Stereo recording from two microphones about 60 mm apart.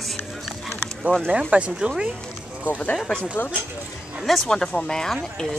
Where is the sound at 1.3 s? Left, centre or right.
Centre.